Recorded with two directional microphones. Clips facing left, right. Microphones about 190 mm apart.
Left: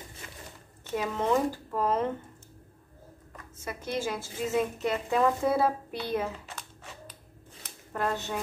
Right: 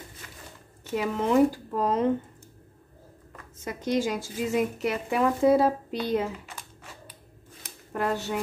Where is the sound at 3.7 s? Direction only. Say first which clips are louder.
Right 5 dB; 15° right (ahead or behind).